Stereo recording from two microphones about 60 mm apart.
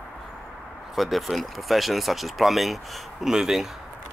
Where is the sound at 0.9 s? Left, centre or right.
Centre.